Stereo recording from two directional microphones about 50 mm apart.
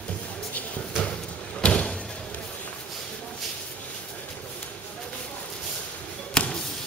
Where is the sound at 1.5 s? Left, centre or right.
Left.